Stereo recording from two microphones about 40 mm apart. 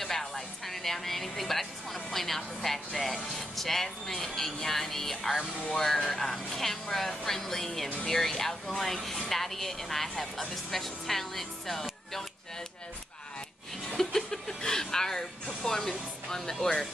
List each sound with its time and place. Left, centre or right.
0.0 s a woman's voice: centre
13.8 s speech: centre